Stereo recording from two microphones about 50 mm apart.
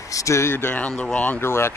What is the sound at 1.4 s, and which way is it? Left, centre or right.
Speech, left.